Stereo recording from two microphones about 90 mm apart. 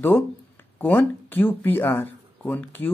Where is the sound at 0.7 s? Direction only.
20° left (ahead or behind).